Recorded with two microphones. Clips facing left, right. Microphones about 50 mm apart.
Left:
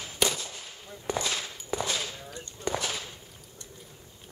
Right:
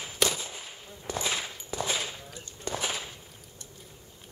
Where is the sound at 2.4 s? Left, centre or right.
Left.